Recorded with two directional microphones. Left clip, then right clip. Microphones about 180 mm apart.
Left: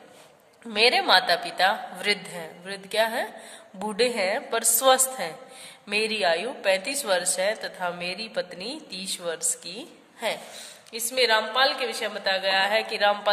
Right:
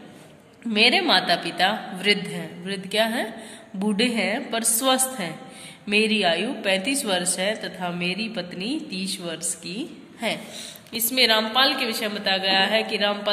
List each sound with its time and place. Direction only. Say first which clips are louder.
0.7 s a woman's voice: right 1 dB; 55° left (ahead or behind)